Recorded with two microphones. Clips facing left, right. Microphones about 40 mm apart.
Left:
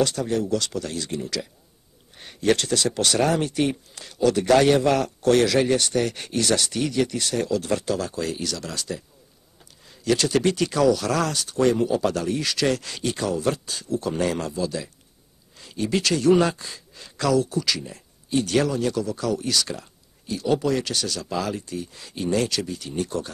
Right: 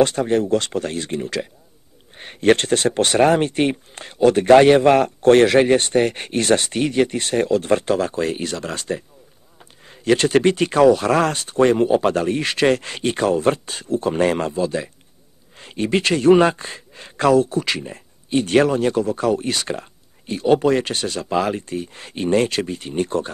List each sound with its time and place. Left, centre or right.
0.0 s speech: right